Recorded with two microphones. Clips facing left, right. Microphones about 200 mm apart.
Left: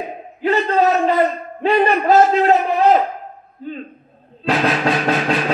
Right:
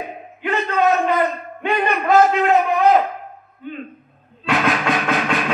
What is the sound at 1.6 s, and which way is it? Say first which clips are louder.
A man's voice: left 5 dB; 35° left (ahead or behind).